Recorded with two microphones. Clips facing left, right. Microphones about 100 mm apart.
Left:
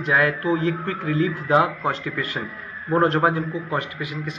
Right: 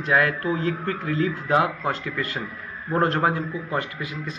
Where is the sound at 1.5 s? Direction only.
30° left (ahead or behind).